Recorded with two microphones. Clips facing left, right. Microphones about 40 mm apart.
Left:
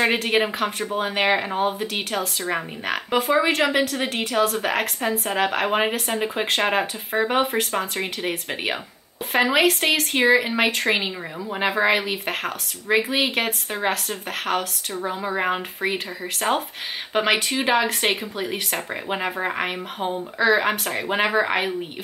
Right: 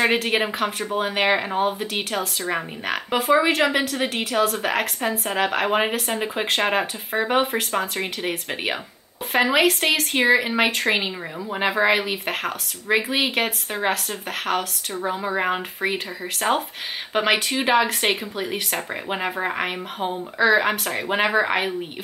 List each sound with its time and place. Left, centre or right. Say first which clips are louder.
0.0 s speech: even; centre